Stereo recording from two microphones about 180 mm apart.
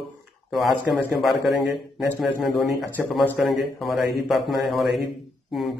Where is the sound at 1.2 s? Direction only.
Centre (ahead or behind).